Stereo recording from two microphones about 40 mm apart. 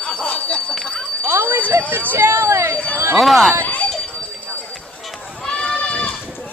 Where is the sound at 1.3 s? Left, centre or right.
Right.